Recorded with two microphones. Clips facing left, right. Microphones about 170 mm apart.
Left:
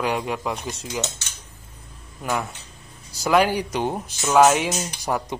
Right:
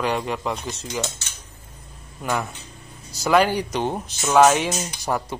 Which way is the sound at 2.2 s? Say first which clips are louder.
Right 1 dB; 5° left (ahead or behind).